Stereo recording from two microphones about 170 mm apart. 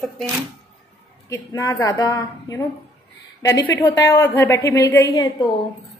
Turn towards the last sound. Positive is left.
turn(degrees=20)  # may be behind; listen again after turning